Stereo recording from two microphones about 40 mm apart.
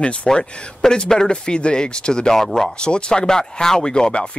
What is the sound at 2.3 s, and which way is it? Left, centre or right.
Speech, centre.